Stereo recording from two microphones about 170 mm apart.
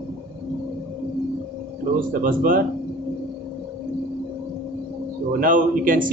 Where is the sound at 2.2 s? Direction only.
55° right (ahead or behind).